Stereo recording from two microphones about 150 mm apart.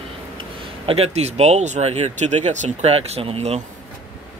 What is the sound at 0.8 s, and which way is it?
Speech, 40° right (ahead or behind).